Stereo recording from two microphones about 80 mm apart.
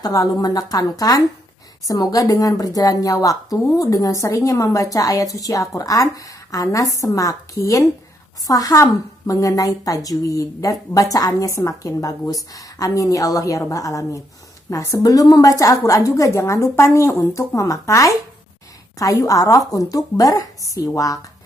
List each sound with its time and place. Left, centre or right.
0.0 s a woman's voice: left